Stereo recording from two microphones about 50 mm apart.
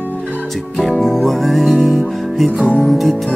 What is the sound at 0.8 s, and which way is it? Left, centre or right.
Music, centre.